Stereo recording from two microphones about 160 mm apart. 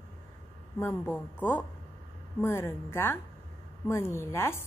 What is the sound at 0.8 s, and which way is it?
Speech, 15° left (ahead or behind).